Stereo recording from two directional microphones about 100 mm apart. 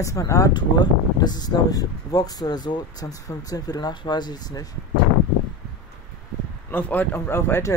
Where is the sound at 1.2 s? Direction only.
45° left (ahead or behind).